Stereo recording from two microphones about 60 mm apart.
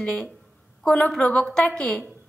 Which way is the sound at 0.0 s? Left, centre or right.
Centre.